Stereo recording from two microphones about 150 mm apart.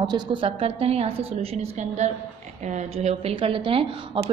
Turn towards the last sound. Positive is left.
turn(degrees=-40)  # may be behind; listen again after turning